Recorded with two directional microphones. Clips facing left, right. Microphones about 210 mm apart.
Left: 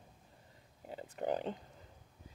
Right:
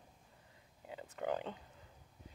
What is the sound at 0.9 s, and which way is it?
Speech, 25° left (ahead or behind).